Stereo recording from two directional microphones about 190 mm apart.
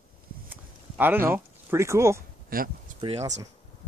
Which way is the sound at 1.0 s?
10° right (ahead or behind).